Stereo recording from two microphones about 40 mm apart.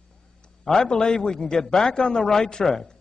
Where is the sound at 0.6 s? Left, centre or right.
Centre.